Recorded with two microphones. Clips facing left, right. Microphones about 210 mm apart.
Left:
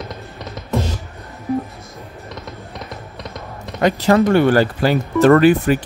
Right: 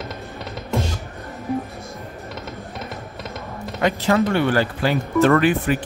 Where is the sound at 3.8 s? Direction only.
40° left (ahead or behind).